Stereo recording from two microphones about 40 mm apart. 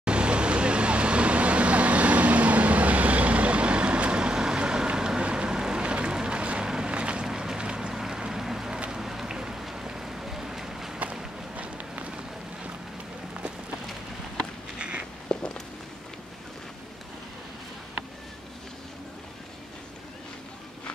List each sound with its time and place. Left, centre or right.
0.0 s vehicle: right
7.2 s vehicle: centre
7.9 s vehicle: centre
8.6 s vehicle: right
9.8 s boat: centre
11.5 s run: right
14.8 s walk: right
15.3 s walk: left